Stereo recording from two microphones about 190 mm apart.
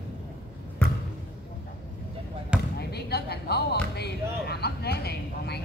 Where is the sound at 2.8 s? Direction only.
60° left (ahead or behind).